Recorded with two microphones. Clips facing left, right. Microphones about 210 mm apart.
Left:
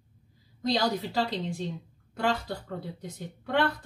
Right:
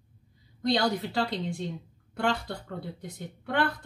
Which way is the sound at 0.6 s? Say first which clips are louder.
Right 1 dB; centre (ahead or behind).